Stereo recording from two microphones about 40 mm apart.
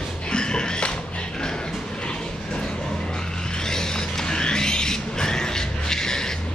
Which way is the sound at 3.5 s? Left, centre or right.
Centre.